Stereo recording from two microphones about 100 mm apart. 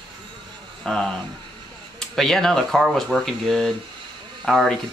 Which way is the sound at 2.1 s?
5° left (ahead or behind).